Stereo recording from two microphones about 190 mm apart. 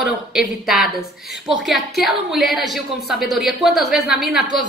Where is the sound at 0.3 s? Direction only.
Centre (ahead or behind).